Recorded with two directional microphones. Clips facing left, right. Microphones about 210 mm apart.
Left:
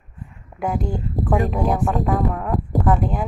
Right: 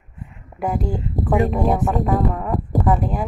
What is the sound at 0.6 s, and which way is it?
Speech, centre (ahead or behind).